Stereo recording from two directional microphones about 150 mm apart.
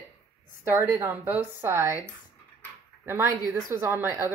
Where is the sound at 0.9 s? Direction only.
15° right (ahead or behind).